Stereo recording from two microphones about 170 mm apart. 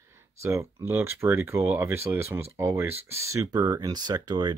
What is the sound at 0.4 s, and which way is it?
Speech, 15° right (ahead or behind).